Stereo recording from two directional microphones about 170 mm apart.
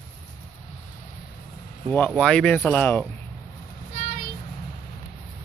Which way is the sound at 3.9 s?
60° left (ahead or behind).